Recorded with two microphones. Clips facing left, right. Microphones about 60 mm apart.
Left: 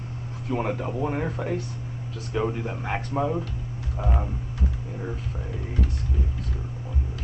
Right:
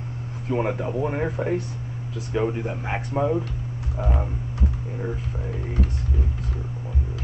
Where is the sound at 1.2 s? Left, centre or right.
Right.